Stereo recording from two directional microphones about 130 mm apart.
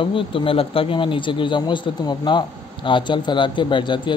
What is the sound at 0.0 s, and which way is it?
Speech, 40° left (ahead or behind).